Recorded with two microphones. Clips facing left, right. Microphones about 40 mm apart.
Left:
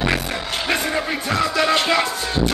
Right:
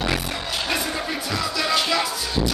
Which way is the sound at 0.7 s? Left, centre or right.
Left.